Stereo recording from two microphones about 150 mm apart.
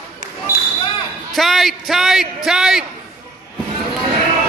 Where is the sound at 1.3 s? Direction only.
Centre (ahead or behind).